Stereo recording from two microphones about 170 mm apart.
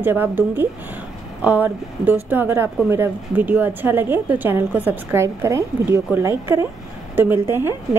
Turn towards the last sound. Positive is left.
turn(degrees=-15)  # may be behind; listen again after turning